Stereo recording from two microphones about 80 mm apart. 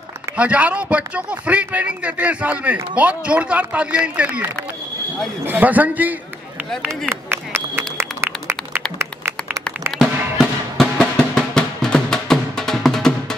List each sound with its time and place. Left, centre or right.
0.4 s a man's voice: centre
7.1 s a sound: right
9.9 s music: centre